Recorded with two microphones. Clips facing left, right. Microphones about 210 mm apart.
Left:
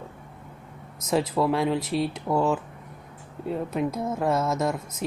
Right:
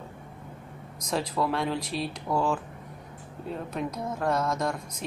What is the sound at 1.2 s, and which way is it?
Speech, 25° left (ahead or behind).